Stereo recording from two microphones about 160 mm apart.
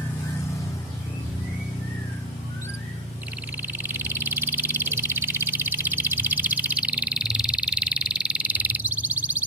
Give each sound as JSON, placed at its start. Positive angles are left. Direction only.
{"t": 3.6, "sound": "frog", "side_deg": -15}